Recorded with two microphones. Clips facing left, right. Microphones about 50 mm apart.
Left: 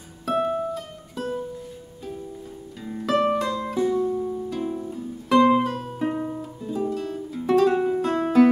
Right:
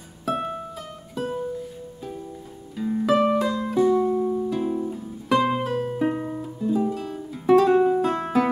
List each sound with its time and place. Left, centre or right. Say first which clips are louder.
0.2 s music: left 4 dB; centre
3.9 s music: right 3 dB; right
4.5 s music: right 3 dB; centre